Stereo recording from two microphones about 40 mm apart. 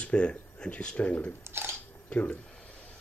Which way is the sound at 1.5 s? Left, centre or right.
Right.